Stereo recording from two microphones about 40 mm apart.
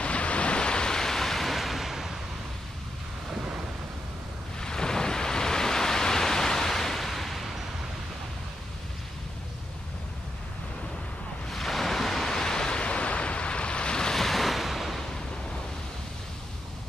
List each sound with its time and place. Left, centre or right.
0.0 s waves: left; by 2.1 s centre
4.6 s pink noise: centre
11.5 s waves: centre; by 14.1 s left
14.1 s waves: centre